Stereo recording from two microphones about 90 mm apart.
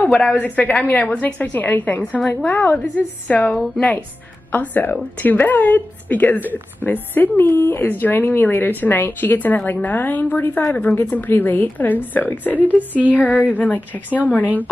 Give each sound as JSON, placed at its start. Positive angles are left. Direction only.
{"t": 0.0, "sound": "a woman's voice", "side_deg": 15}